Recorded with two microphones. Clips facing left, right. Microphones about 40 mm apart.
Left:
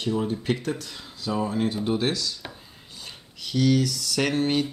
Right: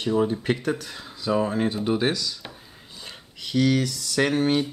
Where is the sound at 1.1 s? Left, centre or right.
Right.